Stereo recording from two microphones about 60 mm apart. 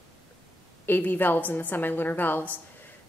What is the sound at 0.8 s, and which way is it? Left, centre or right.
A woman's voice, left.